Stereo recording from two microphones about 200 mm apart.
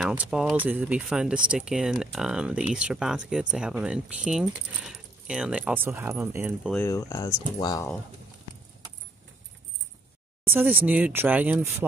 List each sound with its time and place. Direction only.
0.0 s speech: 5° right (ahead or behind)
6.7 s speech: 15° left (ahead or behind)
10.4 s speech: 10° right (ahead or behind)